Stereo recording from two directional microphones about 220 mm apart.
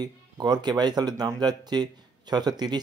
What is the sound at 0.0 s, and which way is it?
Speech, 20° right (ahead or behind).